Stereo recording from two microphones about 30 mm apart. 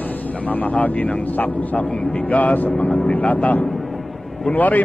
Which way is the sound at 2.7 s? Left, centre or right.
Left.